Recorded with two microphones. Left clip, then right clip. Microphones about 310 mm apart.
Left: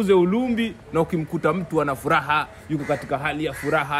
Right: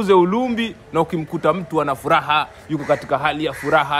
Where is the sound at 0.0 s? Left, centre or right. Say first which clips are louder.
Right 4 dB; centre.